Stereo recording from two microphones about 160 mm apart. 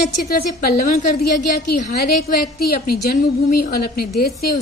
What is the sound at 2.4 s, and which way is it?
A woman's voice, 70° left (ahead or behind).